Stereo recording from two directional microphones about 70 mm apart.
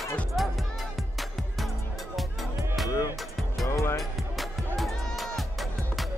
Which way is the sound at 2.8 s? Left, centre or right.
Left.